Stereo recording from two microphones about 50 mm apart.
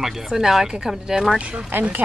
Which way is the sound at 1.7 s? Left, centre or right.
Right.